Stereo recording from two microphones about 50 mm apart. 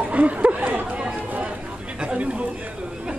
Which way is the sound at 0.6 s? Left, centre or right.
Right.